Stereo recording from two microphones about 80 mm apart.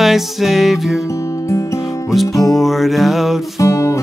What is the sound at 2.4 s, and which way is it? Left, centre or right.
Music, centre.